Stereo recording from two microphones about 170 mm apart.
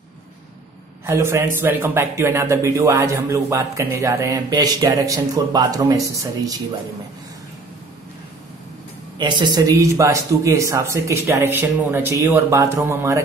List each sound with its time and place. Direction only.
1.0 s a man's voice: 15° right (ahead or behind)
9.2 s a man's voice: 25° right (ahead or behind)